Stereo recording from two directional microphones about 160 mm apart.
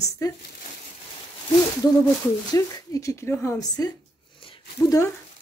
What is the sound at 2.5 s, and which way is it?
Speech, 20° left (ahead or behind).